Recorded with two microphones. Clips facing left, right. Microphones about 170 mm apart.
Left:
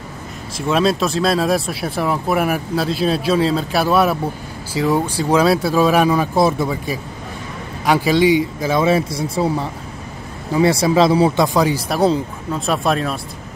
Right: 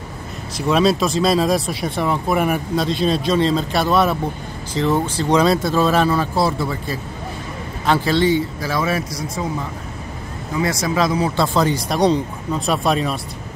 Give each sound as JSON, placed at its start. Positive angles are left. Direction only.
{"t": 0.6, "sound": "speech", "side_deg": 0}
{"t": 11.3, "sound": "speech", "side_deg": 15}